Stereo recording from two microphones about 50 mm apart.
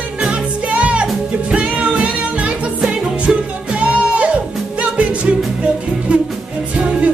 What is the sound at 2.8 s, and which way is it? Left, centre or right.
Music, centre.